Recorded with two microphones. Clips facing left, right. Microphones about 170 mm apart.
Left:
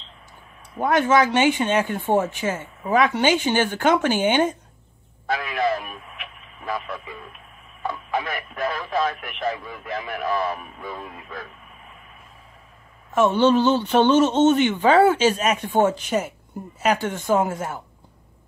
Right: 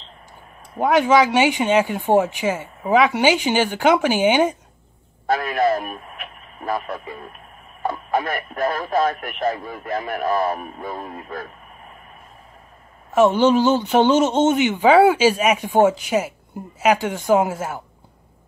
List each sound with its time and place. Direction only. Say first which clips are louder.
0.7 s speech: right 3 dB; 10° right (ahead or behind)
5.2 s speech: right 4 dB; 45° right (ahead or behind)
13.1 s speech: right 2 dB; 10° right (ahead or behind)